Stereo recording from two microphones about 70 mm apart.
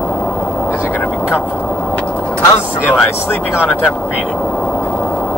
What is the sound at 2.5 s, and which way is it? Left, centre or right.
Speech, left.